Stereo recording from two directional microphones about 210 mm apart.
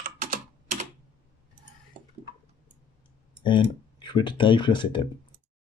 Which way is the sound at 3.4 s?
20° left (ahead or behind).